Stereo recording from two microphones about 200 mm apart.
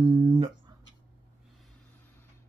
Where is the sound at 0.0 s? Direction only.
30° right (ahead or behind).